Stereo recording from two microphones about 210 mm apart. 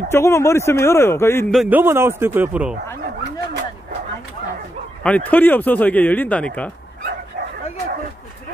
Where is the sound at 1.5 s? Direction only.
10° right (ahead or behind).